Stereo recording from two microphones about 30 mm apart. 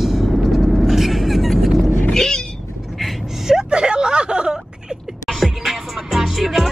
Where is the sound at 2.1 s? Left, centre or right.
Centre.